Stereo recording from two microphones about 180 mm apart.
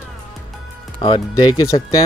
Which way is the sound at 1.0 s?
25° left (ahead or behind).